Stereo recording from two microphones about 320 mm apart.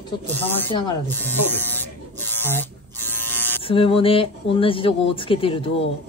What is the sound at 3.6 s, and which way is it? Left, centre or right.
Speech, centre.